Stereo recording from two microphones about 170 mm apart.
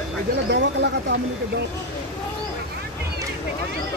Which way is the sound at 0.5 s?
90° right.